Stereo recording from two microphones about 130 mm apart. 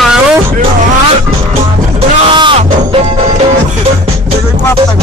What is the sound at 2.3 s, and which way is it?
Music, 40° right (ahead or behind).